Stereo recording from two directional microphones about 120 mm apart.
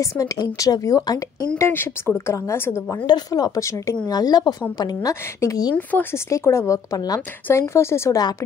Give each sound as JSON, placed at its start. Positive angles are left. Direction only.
{"t": 0.0, "sound": "a woman's voice", "side_deg": 30}
{"t": 1.6, "sound": "a woman's voice", "side_deg": 20}
{"t": 3.1, "sound": "a woman's voice", "side_deg": 30}
{"t": 5.8, "sound": "a woman's voice", "side_deg": 15}